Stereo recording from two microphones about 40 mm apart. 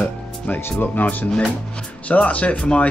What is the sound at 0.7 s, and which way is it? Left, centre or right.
Speech, left.